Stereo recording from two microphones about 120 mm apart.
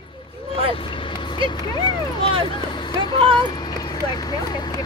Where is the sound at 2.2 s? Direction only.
50° right (ahead or behind).